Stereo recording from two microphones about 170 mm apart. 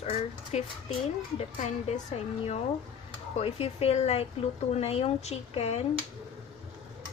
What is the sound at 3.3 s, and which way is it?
A woman's voice, 35° left (ahead or behind).